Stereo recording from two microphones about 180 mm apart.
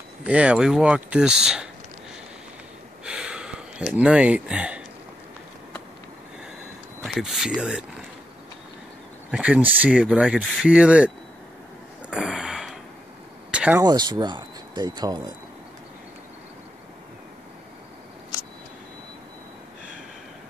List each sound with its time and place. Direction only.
0.2 s speech: 5° right (ahead or behind)
3.1 s a sound: 5° right (ahead or behind)
7.1 s speech: centre (ahead or behind)
9.3 s speech: 5° right (ahead or behind)
12.1 s a sound: 5° right (ahead or behind)
13.8 s speech: 25° right (ahead or behind)